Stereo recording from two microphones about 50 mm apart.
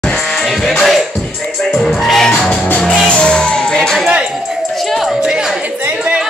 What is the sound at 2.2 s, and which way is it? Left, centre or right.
Music, centre.